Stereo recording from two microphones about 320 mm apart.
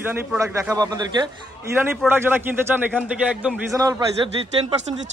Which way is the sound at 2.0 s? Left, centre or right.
Centre.